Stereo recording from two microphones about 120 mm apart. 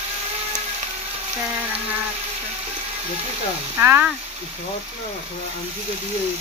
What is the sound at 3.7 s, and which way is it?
Speech, 15° right (ahead or behind).